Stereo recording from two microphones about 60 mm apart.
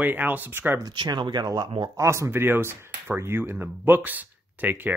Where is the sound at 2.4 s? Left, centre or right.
Right.